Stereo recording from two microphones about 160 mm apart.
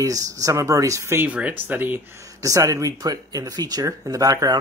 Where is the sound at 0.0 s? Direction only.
20° right (ahead or behind).